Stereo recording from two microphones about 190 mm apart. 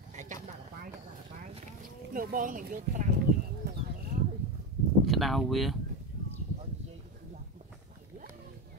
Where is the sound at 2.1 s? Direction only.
45° right (ahead or behind).